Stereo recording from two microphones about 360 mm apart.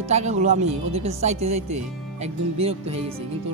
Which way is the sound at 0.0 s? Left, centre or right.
Centre.